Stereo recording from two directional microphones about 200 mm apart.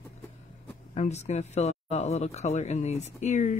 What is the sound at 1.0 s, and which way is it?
Speech, 35° left (ahead or behind).